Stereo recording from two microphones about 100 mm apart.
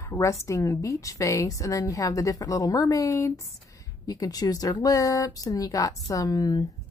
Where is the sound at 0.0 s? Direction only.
30° left (ahead or behind).